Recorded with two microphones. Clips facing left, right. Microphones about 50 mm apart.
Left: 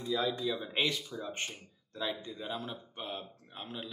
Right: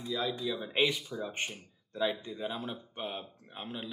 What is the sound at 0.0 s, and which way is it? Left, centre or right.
Speech, centre.